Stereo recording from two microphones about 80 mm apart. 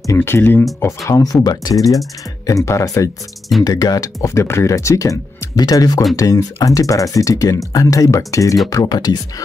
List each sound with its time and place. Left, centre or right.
0.0 s speech: left
0.7 s speech: left
8.8 s speech: left